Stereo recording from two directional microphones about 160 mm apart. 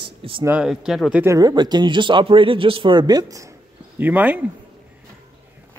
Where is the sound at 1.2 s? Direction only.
20° right (ahead or behind).